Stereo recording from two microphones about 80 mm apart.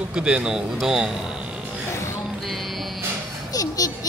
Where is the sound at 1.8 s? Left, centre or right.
Left.